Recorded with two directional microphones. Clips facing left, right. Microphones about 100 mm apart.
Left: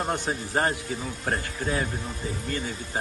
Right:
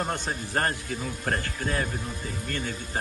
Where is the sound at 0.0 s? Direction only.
15° left (ahead or behind).